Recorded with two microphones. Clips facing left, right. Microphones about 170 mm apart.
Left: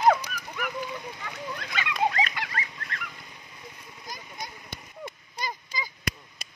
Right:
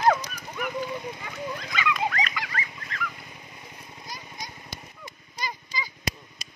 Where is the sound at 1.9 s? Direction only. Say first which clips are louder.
Left 2 dB; 30° left (ahead or behind).